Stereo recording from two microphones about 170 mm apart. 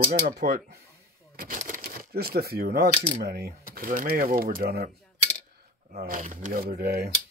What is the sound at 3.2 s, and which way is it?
Speech, 70° right (ahead or behind).